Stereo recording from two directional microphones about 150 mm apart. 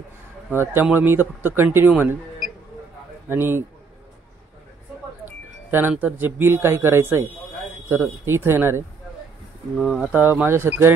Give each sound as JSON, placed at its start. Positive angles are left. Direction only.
{"t": 0.5, "sound": "a man's voice", "side_deg": -15}
{"t": 3.3, "sound": "a man's voice", "side_deg": -15}
{"t": 5.7, "sound": "a man's voice", "side_deg": -15}
{"t": 9.9, "sound": "speech", "side_deg": -5}
{"t": 10.2, "sound": "a man's voice", "side_deg": -15}